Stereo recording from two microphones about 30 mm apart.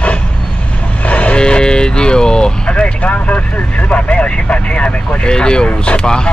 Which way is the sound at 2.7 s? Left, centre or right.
Left.